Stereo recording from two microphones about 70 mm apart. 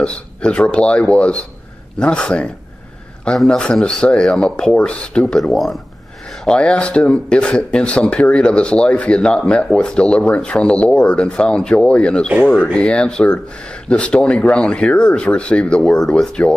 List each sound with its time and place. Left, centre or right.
0.0 s speech: centre
5.4 s speech: centre